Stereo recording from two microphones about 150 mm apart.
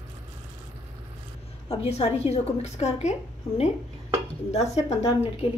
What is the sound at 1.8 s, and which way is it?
A woman's voice, 45° left (ahead or behind).